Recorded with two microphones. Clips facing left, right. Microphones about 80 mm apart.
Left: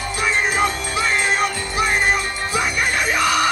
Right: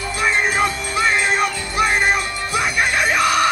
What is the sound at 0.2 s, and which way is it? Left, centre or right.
Music, right.